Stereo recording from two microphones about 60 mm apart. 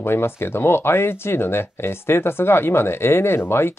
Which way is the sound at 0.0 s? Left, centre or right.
Left.